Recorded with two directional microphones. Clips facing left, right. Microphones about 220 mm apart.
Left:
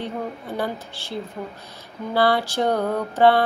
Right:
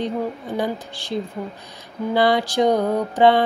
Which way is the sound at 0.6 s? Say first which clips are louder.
Right 3 dB; 15° right (ahead or behind).